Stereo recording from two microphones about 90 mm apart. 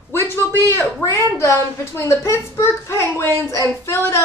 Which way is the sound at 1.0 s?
30° left (ahead or behind).